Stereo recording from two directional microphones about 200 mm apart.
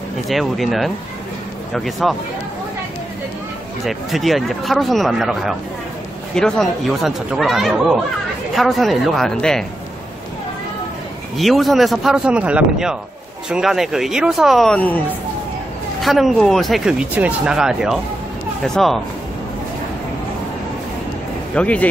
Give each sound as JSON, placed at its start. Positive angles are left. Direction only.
{"t": 0.3, "sound": "speech", "side_deg": 0}
{"t": 3.8, "sound": "speech", "side_deg": 0}
{"t": 11.3, "sound": "speech", "side_deg": 0}
{"t": 16.0, "sound": "speech", "side_deg": 0}
{"t": 21.5, "sound": "speech", "side_deg": 5}